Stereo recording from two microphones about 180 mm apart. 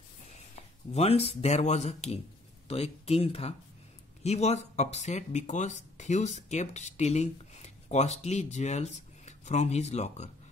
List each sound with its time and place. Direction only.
0.9 s speech: 35° left (ahead or behind)